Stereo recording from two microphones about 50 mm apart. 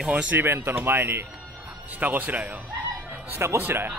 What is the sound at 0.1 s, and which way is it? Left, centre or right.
Speech, right.